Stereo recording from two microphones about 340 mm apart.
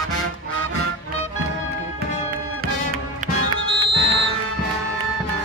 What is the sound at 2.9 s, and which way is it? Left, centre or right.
Music, right.